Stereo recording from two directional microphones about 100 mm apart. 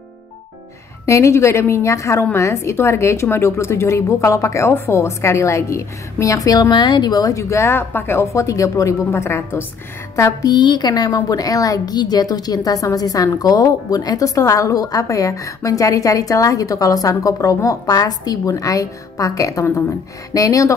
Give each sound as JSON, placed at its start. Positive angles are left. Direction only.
{"t": 1.0, "sound": "speech", "side_deg": 30}
{"t": 6.7, "sound": "a woman's voice", "side_deg": 50}
{"t": 10.5, "sound": "a woman's voice", "side_deg": 45}